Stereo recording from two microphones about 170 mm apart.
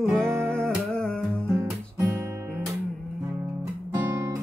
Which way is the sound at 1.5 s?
15° right (ahead or behind).